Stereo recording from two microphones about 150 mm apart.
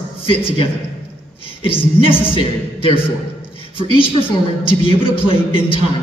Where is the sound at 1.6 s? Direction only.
35° left (ahead or behind).